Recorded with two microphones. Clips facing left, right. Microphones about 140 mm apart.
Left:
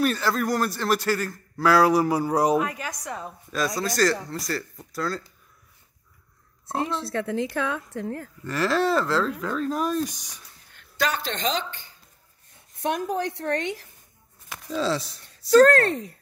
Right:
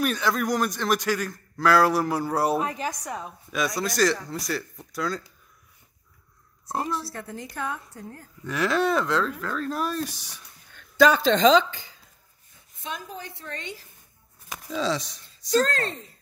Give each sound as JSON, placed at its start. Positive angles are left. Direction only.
{"t": 0.0, "sound": "a man's voice", "side_deg": 0}
{"t": 2.6, "sound": "a woman's voice", "side_deg": -30}
{"t": 2.9, "sound": "a man's voice", "side_deg": -5}
{"t": 7.2, "sound": "a woman's voice", "side_deg": 80}
{"t": 8.5, "sound": "a man's voice", "side_deg": 0}
{"t": 9.9, "sound": "speech", "side_deg": -5}
{"t": 12.7, "sound": "a woman's voice", "side_deg": 65}
{"t": 14.7, "sound": "a man's voice", "side_deg": 5}
{"t": 15.5, "sound": "speech", "side_deg": 60}